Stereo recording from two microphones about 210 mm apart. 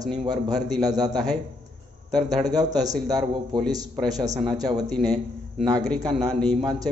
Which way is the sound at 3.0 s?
20° right (ahead or behind).